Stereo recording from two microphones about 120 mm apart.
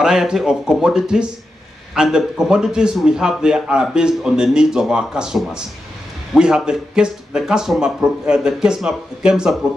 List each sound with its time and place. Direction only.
0.0 s a man's voice: 5° right (ahead or behind)